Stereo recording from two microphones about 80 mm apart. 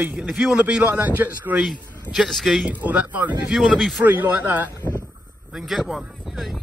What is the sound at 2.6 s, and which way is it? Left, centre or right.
A man's voice, centre.